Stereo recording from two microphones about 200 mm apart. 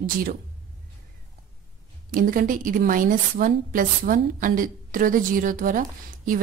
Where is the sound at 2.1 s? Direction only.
45° right (ahead or behind).